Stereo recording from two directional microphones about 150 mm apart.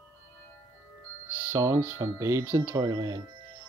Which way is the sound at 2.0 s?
20° right (ahead or behind).